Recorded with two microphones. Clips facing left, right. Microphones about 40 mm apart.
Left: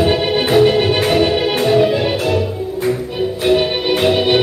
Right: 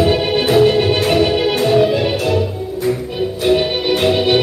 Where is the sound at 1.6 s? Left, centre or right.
Centre.